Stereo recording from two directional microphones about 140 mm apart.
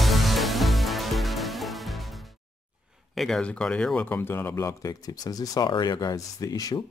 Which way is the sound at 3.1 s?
Centre (ahead or behind).